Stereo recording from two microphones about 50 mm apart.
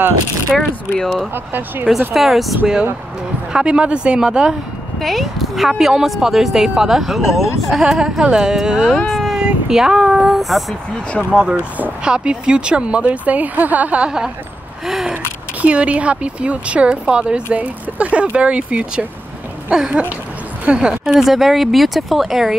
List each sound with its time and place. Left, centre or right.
0.6 s speech: centre
1.3 s speech: right
1.9 s speech: centre
3.5 s speech: centre
5.0 s speech: centre
9.1 s a sound: centre
9.4 s speech: centre
11.5 s speech: right
12.0 s speech: centre
14.0 s speech: centre
15.6 s a woman's voice: right
21.2 s speech: centre